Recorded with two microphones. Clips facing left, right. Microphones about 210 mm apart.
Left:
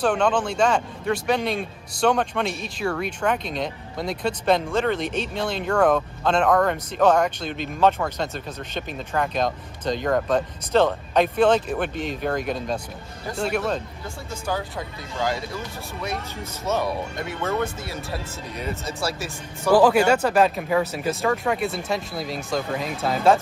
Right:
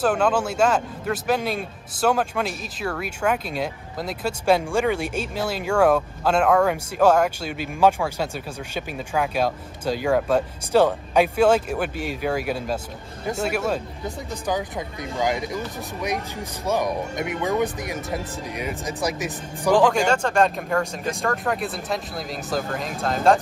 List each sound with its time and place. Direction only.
0.0 s a man's voice: 5° right (ahead or behind)
19.7 s speech: 10° left (ahead or behind)